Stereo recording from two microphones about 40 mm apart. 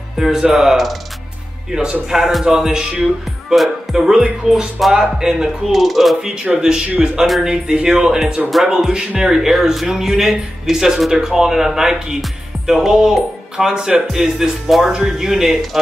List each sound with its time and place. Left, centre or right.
0.4 s speech: centre
2.0 s speech: centre
5.7 s speech: centre
6.6 s speech: centre
13.7 s speech: right
14.1 s speech: centre